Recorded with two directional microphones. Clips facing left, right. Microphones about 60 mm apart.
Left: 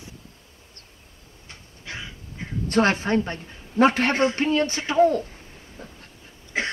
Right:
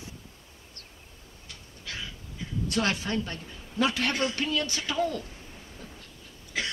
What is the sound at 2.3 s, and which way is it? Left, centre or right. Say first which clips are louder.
A man's voice: left 8 dB; left.